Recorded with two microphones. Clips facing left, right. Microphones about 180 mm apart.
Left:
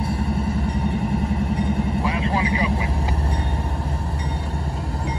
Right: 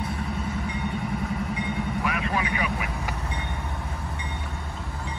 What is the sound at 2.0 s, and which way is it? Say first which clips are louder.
Vehicle: left 5 dB; 30° left (ahead or behind).